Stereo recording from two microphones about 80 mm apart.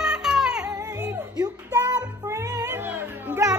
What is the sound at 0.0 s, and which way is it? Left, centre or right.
Music, centre.